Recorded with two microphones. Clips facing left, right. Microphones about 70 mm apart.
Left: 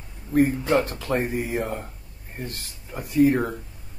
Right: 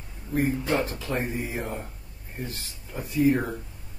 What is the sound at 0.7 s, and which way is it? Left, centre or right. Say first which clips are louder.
Speech: left 5 dB; left.